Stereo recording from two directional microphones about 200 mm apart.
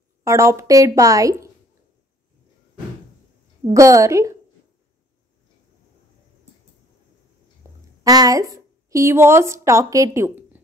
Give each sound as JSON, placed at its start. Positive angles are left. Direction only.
{"t": 0.2, "sound": "a woman's voice", "side_deg": -15}
{"t": 3.7, "sound": "a woman's voice", "side_deg": -15}
{"t": 8.0, "sound": "a woman's voice", "side_deg": -20}